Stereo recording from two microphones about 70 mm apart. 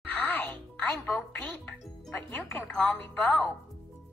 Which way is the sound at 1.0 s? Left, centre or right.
Left.